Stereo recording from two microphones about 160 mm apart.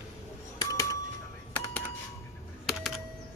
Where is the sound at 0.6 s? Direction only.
20° left (ahead or behind).